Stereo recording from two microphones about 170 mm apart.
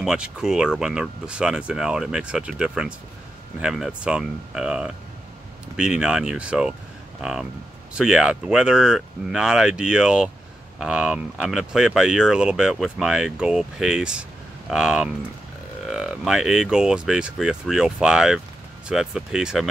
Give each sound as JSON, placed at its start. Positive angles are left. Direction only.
{"t": 0.0, "sound": "speech", "side_deg": -5}